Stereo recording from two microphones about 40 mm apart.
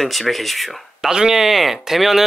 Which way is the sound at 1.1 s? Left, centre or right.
Centre.